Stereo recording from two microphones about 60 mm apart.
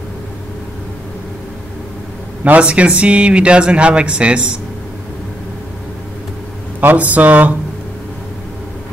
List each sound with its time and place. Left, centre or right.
2.4 s speech: right
6.8 s speech: right